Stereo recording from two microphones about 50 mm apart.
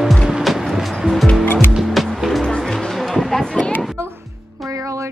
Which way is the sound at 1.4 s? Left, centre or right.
Left.